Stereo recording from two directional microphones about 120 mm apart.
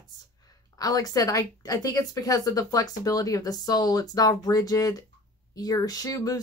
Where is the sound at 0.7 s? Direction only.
30° left (ahead or behind).